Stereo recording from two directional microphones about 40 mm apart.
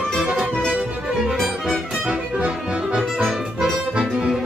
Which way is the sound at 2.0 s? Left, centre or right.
Right.